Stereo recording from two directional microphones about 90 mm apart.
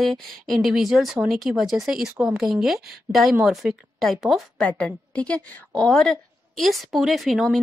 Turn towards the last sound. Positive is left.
turn(degrees=0)  # may be behind; listen again after turning